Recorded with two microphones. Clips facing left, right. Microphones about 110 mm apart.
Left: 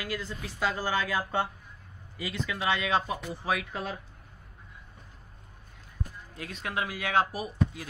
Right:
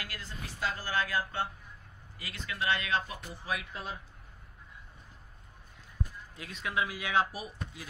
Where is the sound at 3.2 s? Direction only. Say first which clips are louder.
Left 6 dB; 80° left.